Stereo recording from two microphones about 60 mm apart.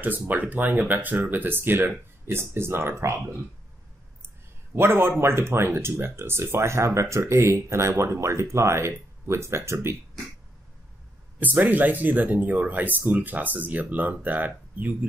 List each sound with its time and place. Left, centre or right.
0.0 s speech: right
4.7 s speech: right
11.3 s speech: right